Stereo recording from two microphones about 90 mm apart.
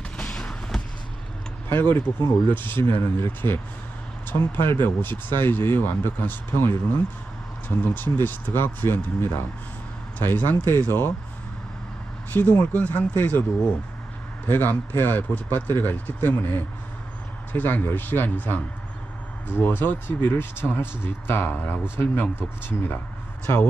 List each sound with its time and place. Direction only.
0.2 s vehicle: 10° left (ahead or behind)
1.7 s speech: 25° left (ahead or behind)
12.3 s speech: 20° left (ahead or behind)
14.5 s speech: 20° left (ahead or behind)
23.4 s speech: 25° left (ahead or behind)